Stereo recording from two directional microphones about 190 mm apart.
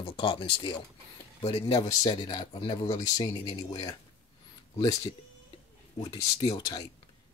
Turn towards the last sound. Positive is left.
turn(degrees=20)  # may be behind; listen again after turning